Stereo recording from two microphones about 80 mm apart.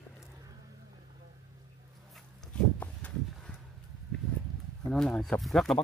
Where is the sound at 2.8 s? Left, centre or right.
Centre.